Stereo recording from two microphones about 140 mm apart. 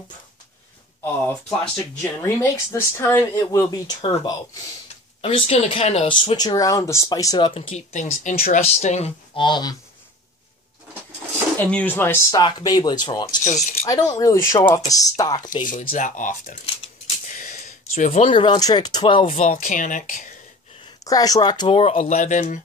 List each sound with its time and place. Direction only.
1.2 s speech: 10° left (ahead or behind)
5.2 s speech: 40° left (ahead or behind)
7.9 s speech: 60° left (ahead or behind)
8.5 s speech: 50° left (ahead or behind)
9.4 s speech: 30° left (ahead or behind)
11.5 s speech: 10° left (ahead or behind)
12.3 s speech: 30° left (ahead or behind)
13.4 s speech: 60° left (ahead or behind)
13.8 s speech: 30° left (ahead or behind)
16.0 s speech: 70° left (ahead or behind)
17.3 s a sound: 65° left (ahead or behind)
18.3 s speech: 35° left (ahead or behind)
19.3 s speech: 65° left (ahead or behind)
21.0 s speech: 25° left (ahead or behind); by 22.6 s 65° left (ahead or behind)